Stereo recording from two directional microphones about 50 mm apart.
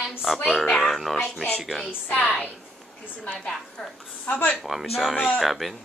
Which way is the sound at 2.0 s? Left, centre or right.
Left.